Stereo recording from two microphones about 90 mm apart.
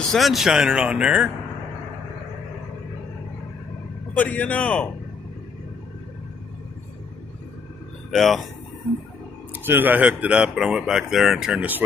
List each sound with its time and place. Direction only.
0.0 s speech: centre (ahead or behind)
4.2 s a man's voice: 20° left (ahead or behind)
8.1 s speech: centre (ahead or behind)
9.6 s speech: 20° right (ahead or behind); by 11.6 s 5° right (ahead or behind)